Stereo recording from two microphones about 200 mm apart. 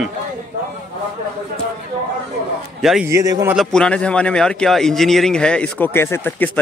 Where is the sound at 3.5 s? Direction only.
5° left (ahead or behind).